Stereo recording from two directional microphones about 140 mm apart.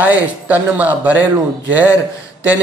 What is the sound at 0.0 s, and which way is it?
Speech, 10° right (ahead or behind).